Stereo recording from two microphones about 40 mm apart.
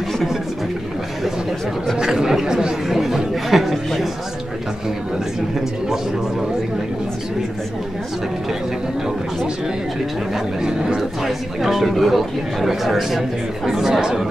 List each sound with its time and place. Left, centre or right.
2.0 s chatter: centre
10.6 s speech: centre
11.0 s a man's voice: centre